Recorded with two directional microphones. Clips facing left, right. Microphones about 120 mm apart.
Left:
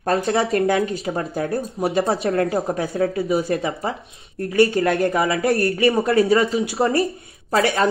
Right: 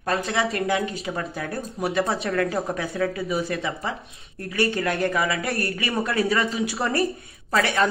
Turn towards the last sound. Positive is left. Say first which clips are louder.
# left 3 dB
turn(degrees=35)  # may be behind; listen again after turning